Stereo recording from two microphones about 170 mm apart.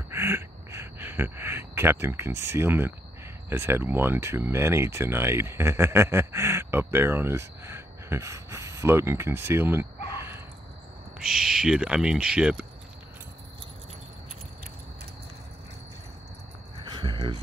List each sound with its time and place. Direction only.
0.1 s speech: 15° right (ahead or behind)
11.1 s speech: 5° right (ahead or behind)
16.8 s a sound: 25° right (ahead or behind)